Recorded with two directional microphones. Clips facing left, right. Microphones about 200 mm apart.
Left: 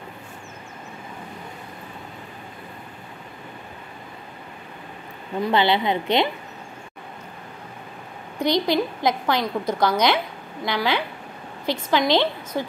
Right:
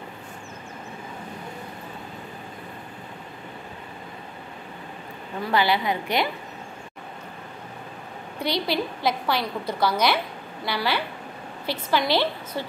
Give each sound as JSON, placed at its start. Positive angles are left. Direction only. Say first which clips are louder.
{"t": 5.5, "sound": "a woman's voice", "louder": "left 2 dB", "side_deg": 25}
{"t": 8.5, "sound": "a woman's voice", "louder": "left 5 dB", "side_deg": 15}